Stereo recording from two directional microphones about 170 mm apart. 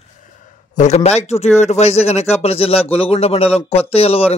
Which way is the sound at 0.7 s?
40° left (ahead or behind).